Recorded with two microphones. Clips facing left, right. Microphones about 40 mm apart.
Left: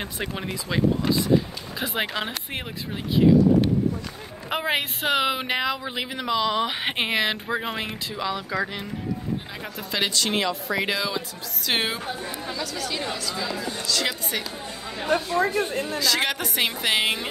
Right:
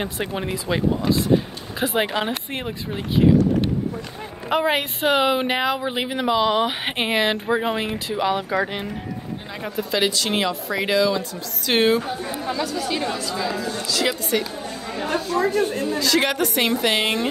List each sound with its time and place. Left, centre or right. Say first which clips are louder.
0.0 s speech: right 4 dB; centre
4.5 s speech: right 5 dB; centre
5.6 s speech: right 4 dB; right
6.8 s speech: right 2 dB; centre
8.1 s speech: right 7 dB; right
9.8 s speech: right 4 dB; centre
12.3 s speech: right 6 dB; centre
13.6 s speech: right 3 dB; centre
15.0 s chatter: even; left
16.0 s speech: right 5 dB; centre